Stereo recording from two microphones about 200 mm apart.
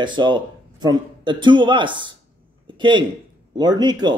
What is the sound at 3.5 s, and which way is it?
Speech, 20° right (ahead or behind).